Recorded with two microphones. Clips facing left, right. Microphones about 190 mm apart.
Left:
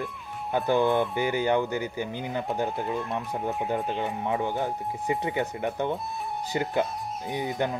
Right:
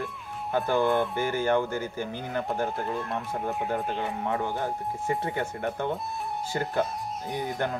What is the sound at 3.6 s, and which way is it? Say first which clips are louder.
Speech: left 1 dB; 20° left (ahead or behind).